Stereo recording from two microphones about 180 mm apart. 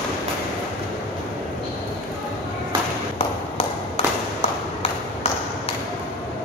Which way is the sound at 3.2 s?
30° left (ahead or behind).